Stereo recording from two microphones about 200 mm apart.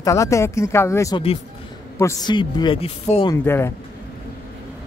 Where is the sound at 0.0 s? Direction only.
15° left (ahead or behind).